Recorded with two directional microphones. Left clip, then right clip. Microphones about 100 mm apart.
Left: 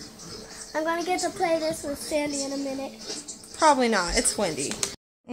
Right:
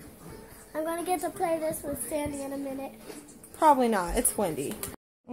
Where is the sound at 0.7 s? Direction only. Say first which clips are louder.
Left 5 dB; 55° left (ahead or behind).